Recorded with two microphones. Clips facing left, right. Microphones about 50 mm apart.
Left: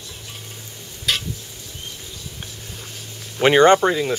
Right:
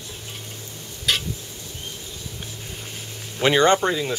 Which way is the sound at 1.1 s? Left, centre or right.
Centre.